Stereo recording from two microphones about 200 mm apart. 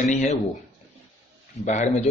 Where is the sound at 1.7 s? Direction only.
35° left (ahead or behind).